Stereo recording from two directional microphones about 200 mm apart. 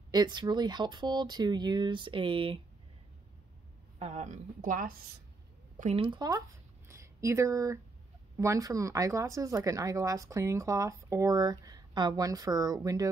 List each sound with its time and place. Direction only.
0.1 s speech: 20° right (ahead or behind)
4.0 s a woman's voice: 35° right (ahead or behind)
5.8 s speech: 30° right (ahead or behind)
6.9 s a sound: 15° right (ahead or behind)
8.4 s speech: 15° right (ahead or behind)